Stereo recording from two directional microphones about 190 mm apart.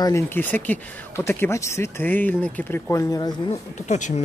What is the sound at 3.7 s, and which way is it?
Speech, 40° left (ahead or behind).